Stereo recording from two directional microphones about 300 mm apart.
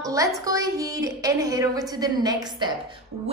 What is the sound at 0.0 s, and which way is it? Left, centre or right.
Music, centre.